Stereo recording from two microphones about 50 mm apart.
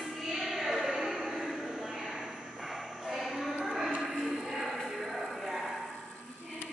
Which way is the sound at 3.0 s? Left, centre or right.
Centre.